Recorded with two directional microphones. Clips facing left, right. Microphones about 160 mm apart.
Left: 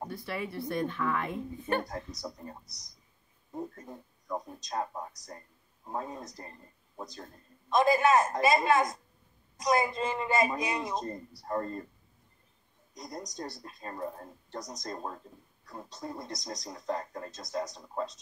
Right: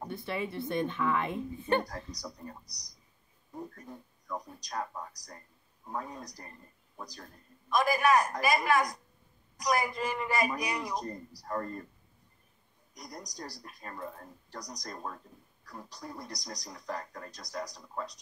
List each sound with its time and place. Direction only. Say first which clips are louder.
0.1 s a woman's voice: right 5 dB; 25° right (ahead or behind)
1.9 s speech: left 3 dB; 25° left (ahead or behind)
12.9 s speech: left 4 dB; 25° left (ahead or behind)